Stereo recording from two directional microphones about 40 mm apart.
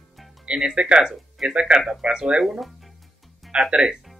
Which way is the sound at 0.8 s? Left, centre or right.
Right.